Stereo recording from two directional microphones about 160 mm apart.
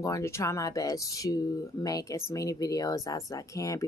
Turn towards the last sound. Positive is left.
turn(degrees=20)  # may be behind; listen again after turning